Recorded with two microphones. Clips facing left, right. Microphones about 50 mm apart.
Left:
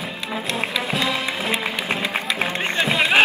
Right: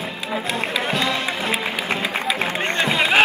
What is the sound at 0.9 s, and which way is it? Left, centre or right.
Music, centre.